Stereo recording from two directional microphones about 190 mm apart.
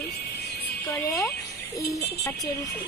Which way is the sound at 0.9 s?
15° left (ahead or behind).